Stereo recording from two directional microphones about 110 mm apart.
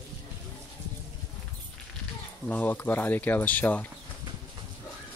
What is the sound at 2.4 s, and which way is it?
Speech, 15° left (ahead or behind).